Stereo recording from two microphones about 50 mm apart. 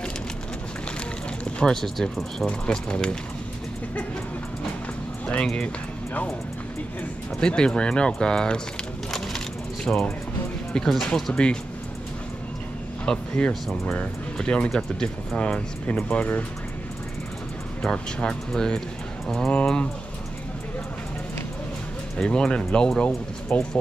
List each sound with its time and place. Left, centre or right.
1.7 s speech: centre
2.4 s speech: centre
7.3 s speech: centre
9.8 s speech: centre
11.3 s speech: left
13.0 s speech: centre
13.5 s speech: centre
13.9 s speech: left
16.1 s speech: left
17.8 s speech: centre
22.1 s speech: centre